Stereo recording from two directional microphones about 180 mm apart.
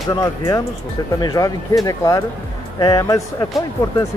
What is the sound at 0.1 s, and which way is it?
A man's voice, 20° left (ahead or behind).